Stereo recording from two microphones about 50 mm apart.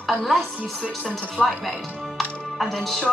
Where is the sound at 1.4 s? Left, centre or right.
Left.